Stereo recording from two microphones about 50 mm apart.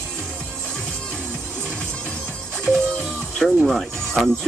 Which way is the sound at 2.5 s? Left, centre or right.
Centre.